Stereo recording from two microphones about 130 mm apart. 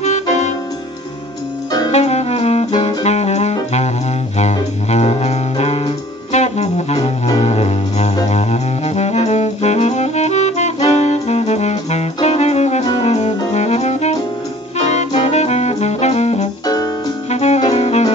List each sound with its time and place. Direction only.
1.9 s saxophone: 55° left (ahead or behind)
3.0 s music: 55° left (ahead or behind)
8.3 s saxophone: 55° left (ahead or behind)
12.3 s music: 55° left (ahead or behind)
13.5 s saxophone: 55° left (ahead or behind)
15.2 s saxophone: 55° left (ahead or behind)
16.6 s music: 30° left (ahead or behind)
17.3 s saxophone: 60° left (ahead or behind)